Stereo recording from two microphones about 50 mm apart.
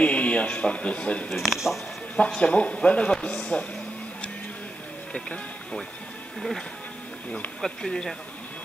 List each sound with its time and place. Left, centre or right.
0.0 s speech: left
1.3 s speech: centre
2.1 s speech: centre
5.1 s speech: centre
7.6 s speech: centre